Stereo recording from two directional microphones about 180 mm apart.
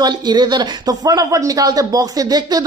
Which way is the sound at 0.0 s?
25° right (ahead or behind).